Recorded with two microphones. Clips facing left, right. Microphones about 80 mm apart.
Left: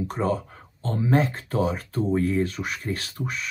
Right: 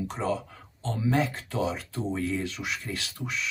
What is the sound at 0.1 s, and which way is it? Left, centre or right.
Speech, left.